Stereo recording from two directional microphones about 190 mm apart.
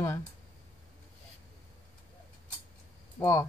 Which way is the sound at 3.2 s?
15° left (ahead or behind).